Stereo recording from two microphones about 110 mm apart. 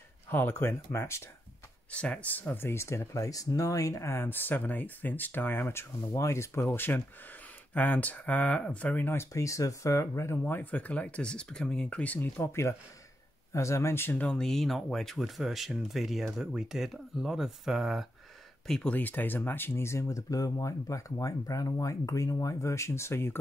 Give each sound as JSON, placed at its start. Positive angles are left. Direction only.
{"t": 0.3, "sound": "speech", "side_deg": 20}
{"t": 1.9, "sound": "speech", "side_deg": 10}
{"t": 10.4, "sound": "speech", "side_deg": 15}
{"t": 14.2, "sound": "speech", "side_deg": 5}
{"t": 18.7, "sound": "speech", "side_deg": 10}